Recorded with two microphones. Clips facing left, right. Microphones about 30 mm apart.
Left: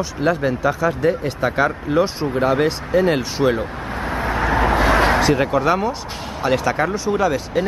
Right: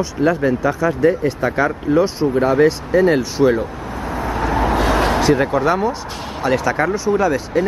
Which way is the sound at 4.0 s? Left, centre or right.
Left.